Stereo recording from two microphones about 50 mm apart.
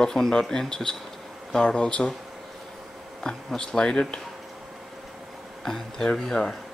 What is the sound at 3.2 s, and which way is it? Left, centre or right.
Speech, centre.